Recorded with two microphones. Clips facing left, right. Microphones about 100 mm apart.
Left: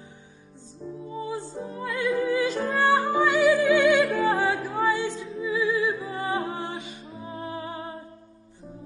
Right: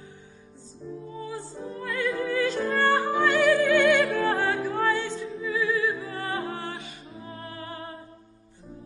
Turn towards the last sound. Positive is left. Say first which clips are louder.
# left 5 dB
turn(degrees=20)  # may be behind; listen again after turning